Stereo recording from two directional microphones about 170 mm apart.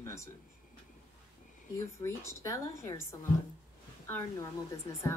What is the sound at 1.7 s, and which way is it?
Speech, 15° left (ahead or behind).